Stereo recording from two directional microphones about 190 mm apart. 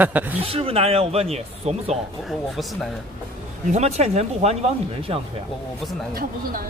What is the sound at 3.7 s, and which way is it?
Speech, 35° right (ahead or behind).